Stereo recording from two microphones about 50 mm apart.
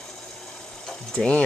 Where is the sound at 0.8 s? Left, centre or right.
Centre.